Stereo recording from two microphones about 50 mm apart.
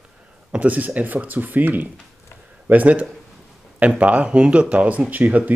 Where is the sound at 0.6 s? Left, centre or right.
Right.